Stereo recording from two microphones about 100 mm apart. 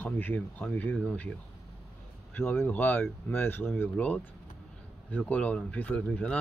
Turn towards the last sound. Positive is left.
turn(degrees=15)  # may be behind; listen again after turning